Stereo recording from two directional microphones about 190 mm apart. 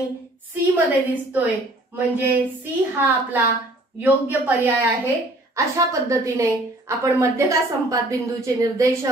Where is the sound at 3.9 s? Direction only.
10° right (ahead or behind).